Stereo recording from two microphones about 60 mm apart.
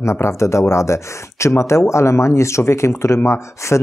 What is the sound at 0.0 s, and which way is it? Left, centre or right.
Speech, left.